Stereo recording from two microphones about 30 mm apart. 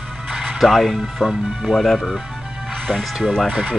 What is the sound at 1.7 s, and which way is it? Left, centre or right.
Speech, centre.